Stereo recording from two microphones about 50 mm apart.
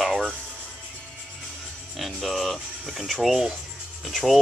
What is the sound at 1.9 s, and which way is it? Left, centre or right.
Speech, centre.